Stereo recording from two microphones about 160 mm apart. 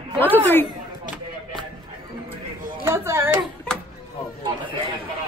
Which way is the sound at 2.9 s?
15° right (ahead or behind).